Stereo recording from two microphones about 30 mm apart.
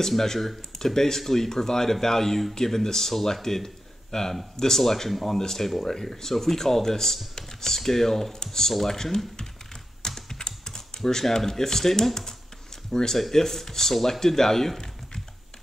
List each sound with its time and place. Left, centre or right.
0.1 s speech: centre
10.0 s typing: centre
12.9 s speech: centre